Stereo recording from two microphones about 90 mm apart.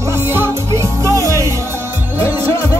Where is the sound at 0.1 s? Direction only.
25° right (ahead or behind).